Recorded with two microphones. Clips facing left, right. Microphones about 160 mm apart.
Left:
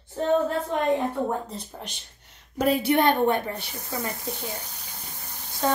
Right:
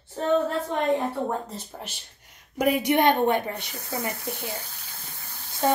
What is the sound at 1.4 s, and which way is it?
A woman's voice, centre (ahead or behind).